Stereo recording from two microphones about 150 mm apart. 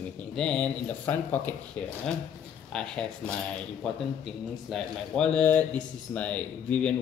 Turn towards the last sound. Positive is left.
turn(degrees=10)  # may be behind; listen again after turning